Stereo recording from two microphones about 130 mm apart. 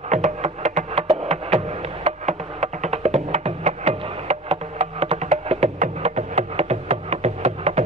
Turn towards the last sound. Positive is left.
turn(degrees=-55)  # may be behind; listen again after turning